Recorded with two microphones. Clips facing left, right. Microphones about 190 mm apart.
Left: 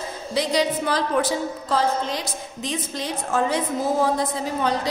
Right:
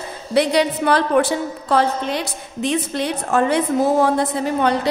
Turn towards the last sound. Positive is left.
turn(degrees=-65)  # may be behind; listen again after turning